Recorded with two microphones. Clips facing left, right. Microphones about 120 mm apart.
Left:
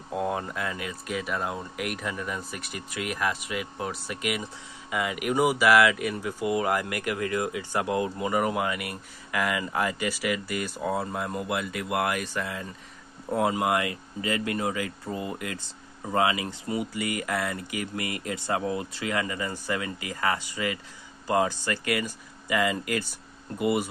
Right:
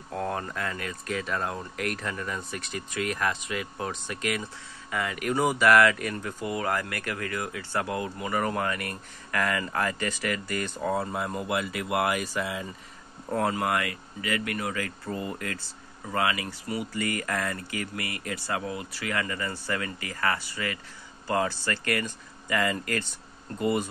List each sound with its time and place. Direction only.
0.1 s speech: 10° left (ahead or behind); by 12.6 s 10° right (ahead or behind)
13.3 s speech: 10° left (ahead or behind)